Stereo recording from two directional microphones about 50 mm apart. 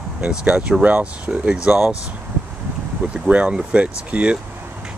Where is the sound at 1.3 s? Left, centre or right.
Centre.